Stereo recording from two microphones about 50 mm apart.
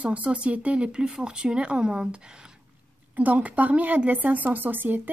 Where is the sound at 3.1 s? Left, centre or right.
Right.